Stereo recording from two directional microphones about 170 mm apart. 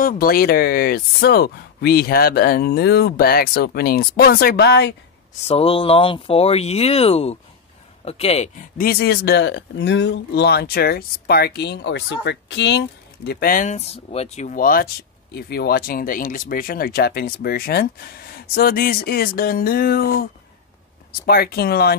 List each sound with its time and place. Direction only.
0.0 s speech: 60° left (ahead or behind)
5.4 s speech: 35° left (ahead or behind)
8.7 s speech: 65° left (ahead or behind)
15.3 s speech: 70° left (ahead or behind)
21.3 s speech: 65° left (ahead or behind)